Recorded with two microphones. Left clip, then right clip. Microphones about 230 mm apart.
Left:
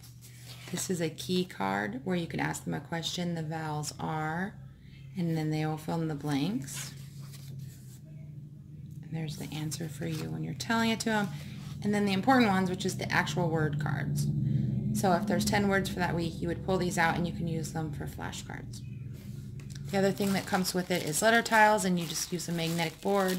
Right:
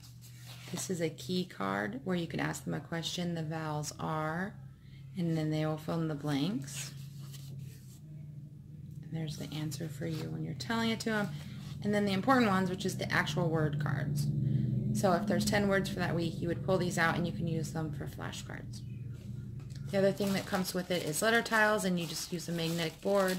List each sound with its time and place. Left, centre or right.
0.7 s speech: centre
9.1 s speech: centre
19.9 s speech: centre